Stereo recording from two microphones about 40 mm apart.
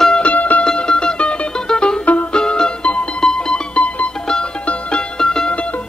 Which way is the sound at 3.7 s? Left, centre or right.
Left.